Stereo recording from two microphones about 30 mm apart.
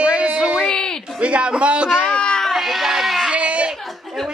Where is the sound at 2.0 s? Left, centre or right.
Left.